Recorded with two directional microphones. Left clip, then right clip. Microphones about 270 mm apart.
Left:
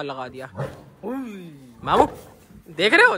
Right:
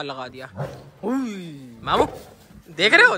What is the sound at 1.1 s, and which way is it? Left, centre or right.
Speech, right.